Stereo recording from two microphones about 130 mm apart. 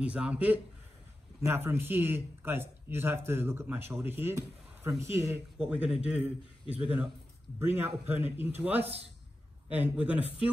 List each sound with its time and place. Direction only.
0.0 s speech: 10° right (ahead or behind)
5.6 s speech: 10° right (ahead or behind)